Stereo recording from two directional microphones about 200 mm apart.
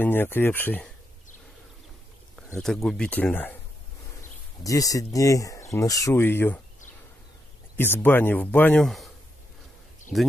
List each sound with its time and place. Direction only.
0.0 s speech: 10° left (ahead or behind)
2.3 s speech: centre (ahead or behind)
4.6 s speech: 15° left (ahead or behind)
7.7 s speech: 10° left (ahead or behind)
10.1 s speech: centre (ahead or behind)